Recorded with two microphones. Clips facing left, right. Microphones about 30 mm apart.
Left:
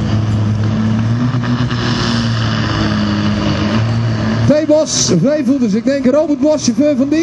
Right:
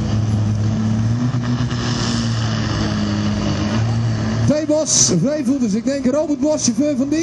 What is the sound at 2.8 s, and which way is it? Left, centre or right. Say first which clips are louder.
Vehicle: left 5 dB; left.